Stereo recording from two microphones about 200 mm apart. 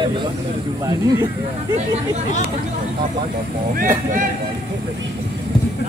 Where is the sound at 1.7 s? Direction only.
35° right (ahead or behind).